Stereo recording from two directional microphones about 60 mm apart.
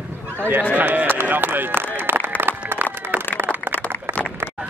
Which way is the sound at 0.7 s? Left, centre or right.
Right.